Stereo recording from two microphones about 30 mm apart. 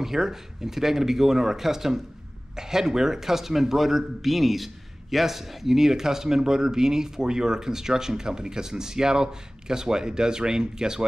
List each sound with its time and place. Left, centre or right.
0.0 s a man's voice: centre